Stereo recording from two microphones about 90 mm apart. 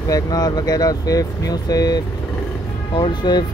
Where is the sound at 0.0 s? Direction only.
45° left (ahead or behind).